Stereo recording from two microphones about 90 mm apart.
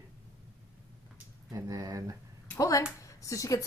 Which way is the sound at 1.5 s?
40° right (ahead or behind).